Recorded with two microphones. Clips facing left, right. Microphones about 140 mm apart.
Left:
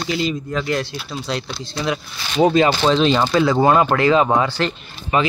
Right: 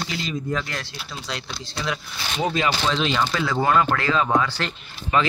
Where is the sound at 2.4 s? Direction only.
35° left (ahead or behind).